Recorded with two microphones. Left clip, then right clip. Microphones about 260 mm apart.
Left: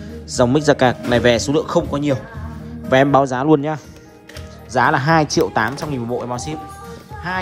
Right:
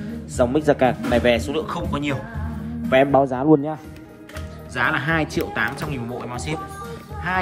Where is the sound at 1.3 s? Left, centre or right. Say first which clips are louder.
Left 6 dB; left.